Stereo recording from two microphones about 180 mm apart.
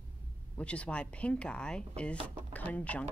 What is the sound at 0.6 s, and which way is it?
A woman's voice, 5° left (ahead or behind).